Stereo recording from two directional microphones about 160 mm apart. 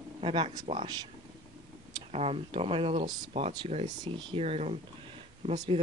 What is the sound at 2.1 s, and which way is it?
Speech, 35° right (ahead or behind).